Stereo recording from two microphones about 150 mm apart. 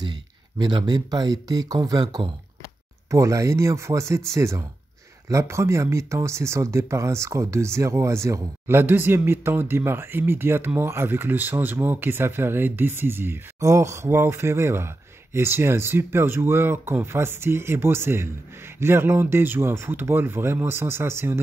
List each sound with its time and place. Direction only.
0.0 s speech: 30° right (ahead or behind)